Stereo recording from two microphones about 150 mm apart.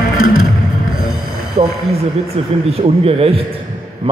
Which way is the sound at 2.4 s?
45° right (ahead or behind).